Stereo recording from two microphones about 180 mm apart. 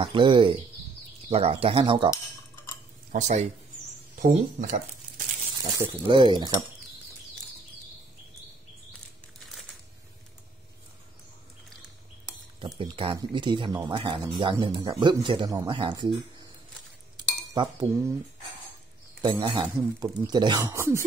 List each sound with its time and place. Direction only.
0.0 s speech: 25° right (ahead or behind)
3.1 s speech: 40° right (ahead or behind)
5.6 s speech: 25° right (ahead or behind)
12.5 s speech: 30° right (ahead or behind)
17.2 s cutlery: 25° right (ahead or behind)
19.2 s speech: 25° right (ahead or behind)